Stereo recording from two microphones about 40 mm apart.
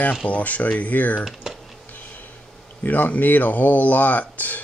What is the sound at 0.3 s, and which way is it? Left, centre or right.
Speech, left.